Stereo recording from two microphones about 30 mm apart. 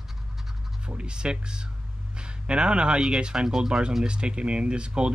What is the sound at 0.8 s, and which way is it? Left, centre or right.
Speech, right.